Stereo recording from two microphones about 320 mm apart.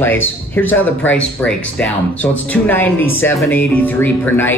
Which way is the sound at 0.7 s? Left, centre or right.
Centre.